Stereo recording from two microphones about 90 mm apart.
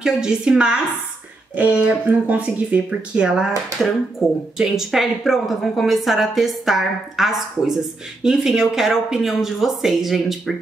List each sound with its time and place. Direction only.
0.0 s speech: 10° right (ahead or behind)